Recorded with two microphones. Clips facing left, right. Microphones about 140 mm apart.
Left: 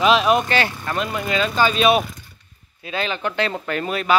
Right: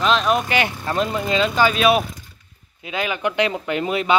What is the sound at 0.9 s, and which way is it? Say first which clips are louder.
Speech: right 3 dB; 25° right (ahead or behind).